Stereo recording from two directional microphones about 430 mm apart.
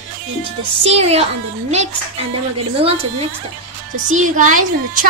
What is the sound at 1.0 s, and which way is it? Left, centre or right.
A woman's voice, centre.